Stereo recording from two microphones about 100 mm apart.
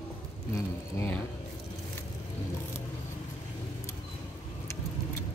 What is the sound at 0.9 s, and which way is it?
Speech, 20° left (ahead or behind).